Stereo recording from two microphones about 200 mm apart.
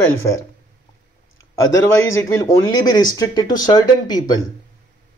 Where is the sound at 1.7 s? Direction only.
15° left (ahead or behind).